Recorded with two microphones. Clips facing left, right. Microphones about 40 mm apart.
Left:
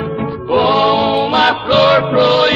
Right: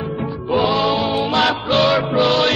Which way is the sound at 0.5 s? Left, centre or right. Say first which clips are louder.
Left 5 dB; left.